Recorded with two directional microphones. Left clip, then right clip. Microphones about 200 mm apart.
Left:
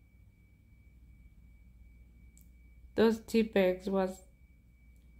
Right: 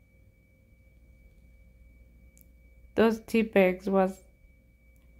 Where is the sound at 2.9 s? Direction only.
20° right (ahead or behind).